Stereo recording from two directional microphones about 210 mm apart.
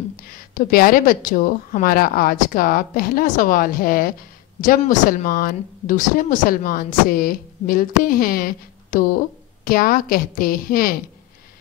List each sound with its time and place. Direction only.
0.6 s speech: 45° left (ahead or behind)